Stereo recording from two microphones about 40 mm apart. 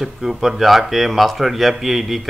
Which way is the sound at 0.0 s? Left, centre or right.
Centre.